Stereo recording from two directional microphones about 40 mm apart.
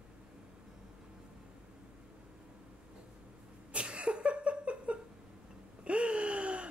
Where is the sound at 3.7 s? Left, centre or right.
Right.